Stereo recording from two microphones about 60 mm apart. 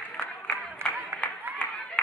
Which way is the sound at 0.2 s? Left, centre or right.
Centre.